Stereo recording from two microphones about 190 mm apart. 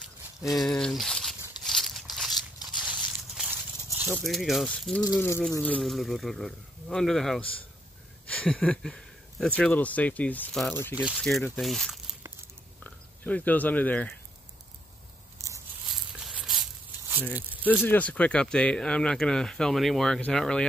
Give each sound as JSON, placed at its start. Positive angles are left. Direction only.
{"t": 0.4, "sound": "speech", "side_deg": 15}
{"t": 0.7, "sound": "a sound", "side_deg": 5}
{"t": 4.0, "sound": "speech", "side_deg": -5}
{"t": 5.0, "sound": "speech", "side_deg": 15}
{"t": 5.6, "sound": "speech", "side_deg": 5}
{"t": 11.0, "sound": "speech", "side_deg": -5}
{"t": 15.9, "sound": "walk", "side_deg": 0}
{"t": 17.1, "sound": "speech", "side_deg": -10}
{"t": 17.8, "sound": "speech", "side_deg": 10}